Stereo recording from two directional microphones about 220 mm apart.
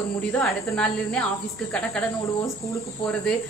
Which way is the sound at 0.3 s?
5° left (ahead or behind).